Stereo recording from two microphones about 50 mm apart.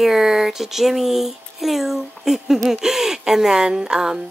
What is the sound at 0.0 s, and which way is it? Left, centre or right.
Speech, centre.